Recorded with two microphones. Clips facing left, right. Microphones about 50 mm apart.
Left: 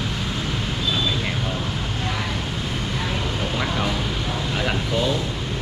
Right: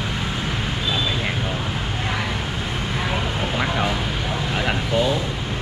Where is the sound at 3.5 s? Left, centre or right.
Centre.